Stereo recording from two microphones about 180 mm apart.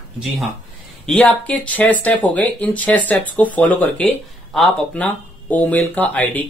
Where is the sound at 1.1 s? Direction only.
5° left (ahead or behind).